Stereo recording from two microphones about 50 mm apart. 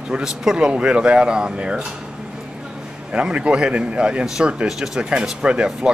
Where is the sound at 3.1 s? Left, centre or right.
Right.